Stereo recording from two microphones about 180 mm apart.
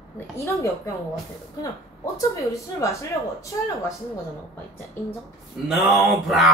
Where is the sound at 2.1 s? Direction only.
15° left (ahead or behind).